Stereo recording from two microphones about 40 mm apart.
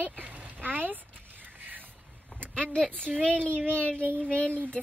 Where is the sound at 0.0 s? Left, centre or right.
Right.